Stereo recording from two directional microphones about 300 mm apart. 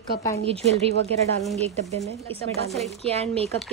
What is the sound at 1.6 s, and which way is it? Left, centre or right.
Speech, right.